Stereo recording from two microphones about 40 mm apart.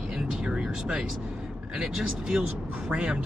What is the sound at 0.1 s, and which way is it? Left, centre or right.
Vehicle, centre.